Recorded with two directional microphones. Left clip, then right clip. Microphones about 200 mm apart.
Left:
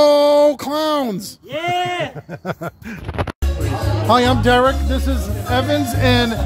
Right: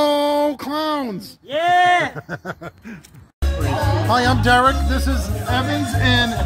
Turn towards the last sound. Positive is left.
turn(degrees=60)  # may be behind; listen again after turning